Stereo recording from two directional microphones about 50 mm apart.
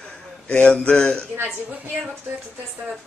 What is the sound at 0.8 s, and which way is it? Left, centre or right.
Speech, left.